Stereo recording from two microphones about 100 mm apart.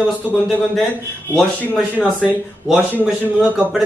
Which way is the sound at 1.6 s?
15° left (ahead or behind).